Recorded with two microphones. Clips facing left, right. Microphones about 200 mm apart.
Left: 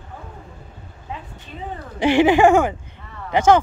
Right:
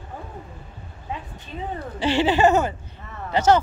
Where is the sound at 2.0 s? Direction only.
15° left (ahead or behind).